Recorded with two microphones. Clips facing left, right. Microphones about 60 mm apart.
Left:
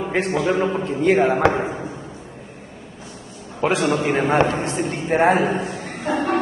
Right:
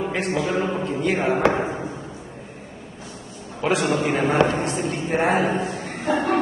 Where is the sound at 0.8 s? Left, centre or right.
Left.